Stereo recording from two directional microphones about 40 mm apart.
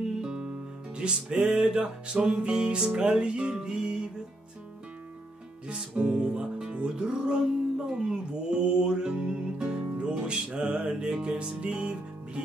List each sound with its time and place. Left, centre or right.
0.2 s music: centre
5.7 s music: right